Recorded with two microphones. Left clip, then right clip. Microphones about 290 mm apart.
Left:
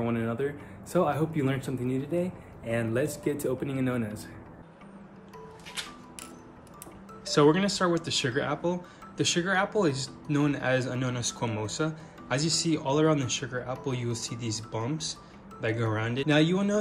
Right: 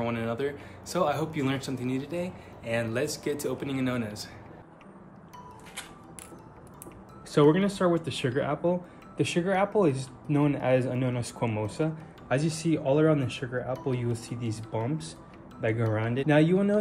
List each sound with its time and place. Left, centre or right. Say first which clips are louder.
0.0 s speech: even; centre
7.2 s speech: even; centre
11.1 s speech: even; left
11.6 s speech: right 1 dB; centre